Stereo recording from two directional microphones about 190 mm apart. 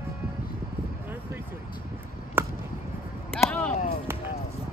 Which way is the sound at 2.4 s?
10° right (ahead or behind).